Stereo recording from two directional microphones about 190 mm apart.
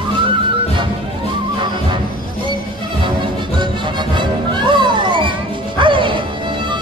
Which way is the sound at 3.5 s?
25° right (ahead or behind).